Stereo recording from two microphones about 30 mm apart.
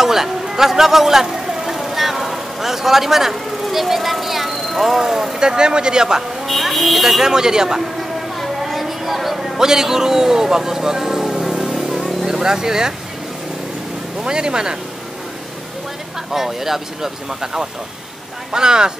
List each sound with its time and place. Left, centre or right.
0.0 s a man's voice: centre
5.4 s speech: right
6.4 s speech: centre
7.2 s speech: right
7.8 s a sound: centre
9.6 s a man's voice: centre
11.7 s vehicle: centre
12.3 s speech: centre
14.2 s speech: right
16.3 s a man's voice: centre